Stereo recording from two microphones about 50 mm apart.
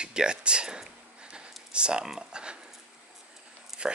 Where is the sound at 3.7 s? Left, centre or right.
Centre.